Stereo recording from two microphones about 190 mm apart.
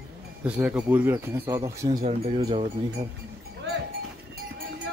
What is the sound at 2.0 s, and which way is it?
Speech, 30° right (ahead or behind).